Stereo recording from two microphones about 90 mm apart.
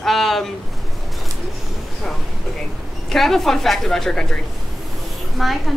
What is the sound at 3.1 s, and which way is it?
A woman's voice, centre (ahead or behind).